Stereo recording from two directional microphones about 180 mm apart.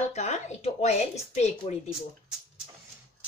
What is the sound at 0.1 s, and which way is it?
A woman's voice, 40° left (ahead or behind).